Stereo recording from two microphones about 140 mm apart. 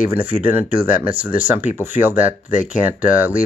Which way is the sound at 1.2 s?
10° right (ahead or behind).